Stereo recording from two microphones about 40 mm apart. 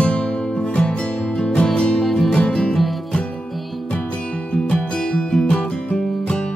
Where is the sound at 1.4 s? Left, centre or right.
Left.